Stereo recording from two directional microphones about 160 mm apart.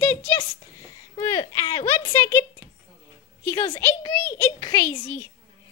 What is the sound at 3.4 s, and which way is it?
A woman's voice, 10° left (ahead or behind).